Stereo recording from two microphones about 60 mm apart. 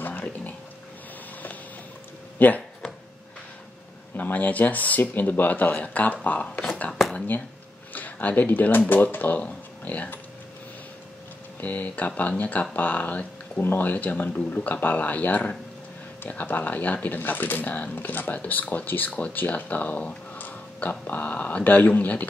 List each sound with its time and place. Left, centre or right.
0.0 s music: left
2.3 s speech: left
4.2 s speech: left
11.6 s speech: left
13.6 s speech: left